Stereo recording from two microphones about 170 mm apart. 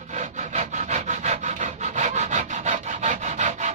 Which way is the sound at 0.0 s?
45° right (ahead or behind).